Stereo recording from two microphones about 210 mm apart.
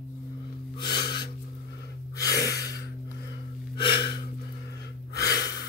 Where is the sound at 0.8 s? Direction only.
50° left (ahead or behind).